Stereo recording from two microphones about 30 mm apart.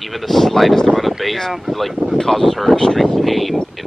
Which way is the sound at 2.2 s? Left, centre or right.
Centre.